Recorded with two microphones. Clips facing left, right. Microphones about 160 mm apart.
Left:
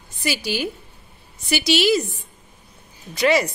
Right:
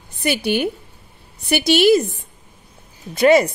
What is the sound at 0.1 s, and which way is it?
A woman's voice, 60° right (ahead or behind).